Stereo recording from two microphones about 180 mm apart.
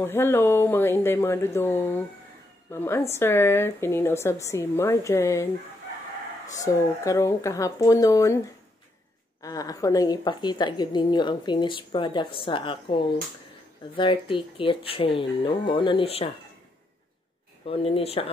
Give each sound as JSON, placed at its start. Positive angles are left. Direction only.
{"t": 0.0, "sound": "a woman's voice", "side_deg": 10}
{"t": 6.5, "sound": "a woman's voice", "side_deg": 20}
{"t": 9.4, "sound": "a woman's voice", "side_deg": 20}
{"t": 17.6, "sound": "speech", "side_deg": 30}